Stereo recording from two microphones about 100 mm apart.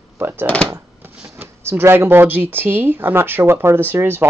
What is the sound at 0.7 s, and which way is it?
Drawer open or close, 25° right (ahead or behind).